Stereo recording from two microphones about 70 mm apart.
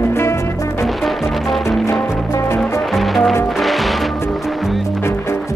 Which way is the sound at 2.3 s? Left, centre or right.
Left.